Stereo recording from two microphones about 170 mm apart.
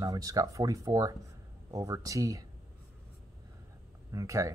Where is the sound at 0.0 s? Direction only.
20° right (ahead or behind).